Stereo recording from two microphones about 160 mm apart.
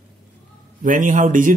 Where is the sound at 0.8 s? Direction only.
55° right (ahead or behind).